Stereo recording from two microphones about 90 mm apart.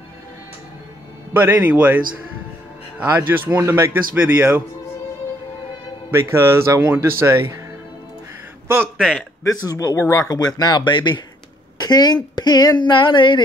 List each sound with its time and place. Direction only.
1.3 s speech: 20° right (ahead or behind)
3.2 s speech: 25° right (ahead or behind)
6.0 s speech: 30° right (ahead or behind)
8.9 s a man's voice: 10° right (ahead or behind)
9.4 s speech: 40° left (ahead or behind); by 13.4 s 65° left (ahead or behind)